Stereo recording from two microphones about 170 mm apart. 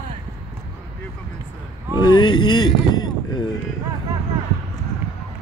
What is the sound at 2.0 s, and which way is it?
Speech, 25° left (ahead or behind).